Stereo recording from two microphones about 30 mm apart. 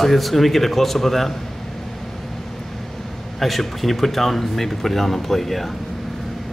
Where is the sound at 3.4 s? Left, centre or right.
Centre.